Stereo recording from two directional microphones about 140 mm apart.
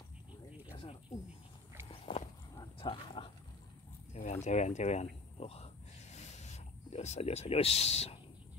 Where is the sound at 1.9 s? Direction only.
45° left (ahead or behind).